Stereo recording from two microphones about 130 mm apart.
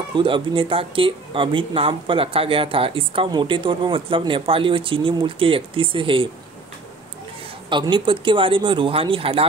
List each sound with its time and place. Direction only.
0.1 s speech: 40° right (ahead or behind)
7.7 s speech: 40° right (ahead or behind)